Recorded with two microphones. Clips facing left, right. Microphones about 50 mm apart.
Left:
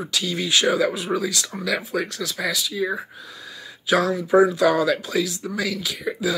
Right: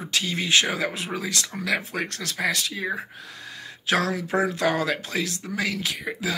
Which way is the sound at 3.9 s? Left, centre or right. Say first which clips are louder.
Left 5 dB; right.